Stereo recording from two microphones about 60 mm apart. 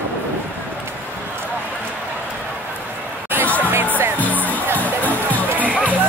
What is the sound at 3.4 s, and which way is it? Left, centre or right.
Music, left.